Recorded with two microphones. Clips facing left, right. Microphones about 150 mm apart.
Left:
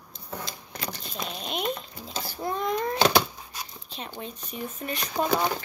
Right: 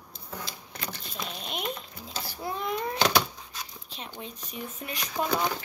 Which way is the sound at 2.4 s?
5° right (ahead or behind).